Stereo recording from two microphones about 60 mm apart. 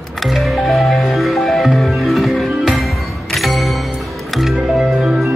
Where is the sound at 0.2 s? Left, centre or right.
Centre.